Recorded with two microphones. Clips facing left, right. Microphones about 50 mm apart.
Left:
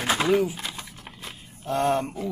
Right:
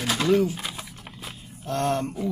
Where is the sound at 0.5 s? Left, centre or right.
Centre.